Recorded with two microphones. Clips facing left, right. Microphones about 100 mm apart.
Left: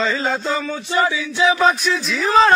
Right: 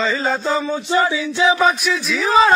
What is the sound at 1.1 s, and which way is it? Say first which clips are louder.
Chant: right 1 dB; 25° right (ahead or behind).